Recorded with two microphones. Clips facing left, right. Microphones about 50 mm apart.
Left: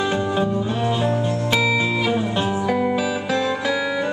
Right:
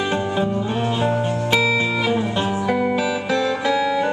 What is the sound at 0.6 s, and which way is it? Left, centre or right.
Music, centre.